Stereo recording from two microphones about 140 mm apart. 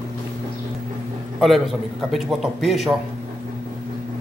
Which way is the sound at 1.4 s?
Centre (ahead or behind).